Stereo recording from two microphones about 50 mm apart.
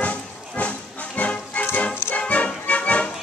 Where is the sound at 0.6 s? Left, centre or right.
Left.